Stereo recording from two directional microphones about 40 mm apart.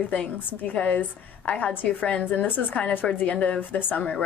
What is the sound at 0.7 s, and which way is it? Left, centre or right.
Speech, left.